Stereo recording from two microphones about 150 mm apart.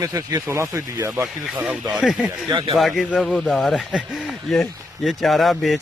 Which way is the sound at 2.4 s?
30° right (ahead or behind).